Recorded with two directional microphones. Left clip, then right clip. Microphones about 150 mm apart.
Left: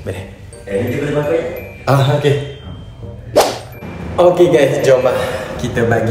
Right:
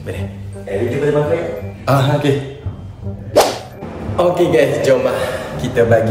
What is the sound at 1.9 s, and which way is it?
Speech, 10° right (ahead or behind).